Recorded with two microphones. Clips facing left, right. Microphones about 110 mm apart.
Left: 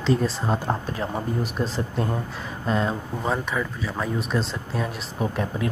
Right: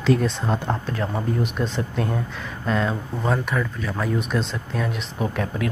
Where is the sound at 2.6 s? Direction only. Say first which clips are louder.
Right 1 dB; 35° left (ahead or behind).